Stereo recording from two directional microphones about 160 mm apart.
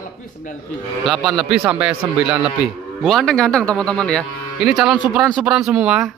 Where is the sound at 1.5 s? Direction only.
10° right (ahead or behind).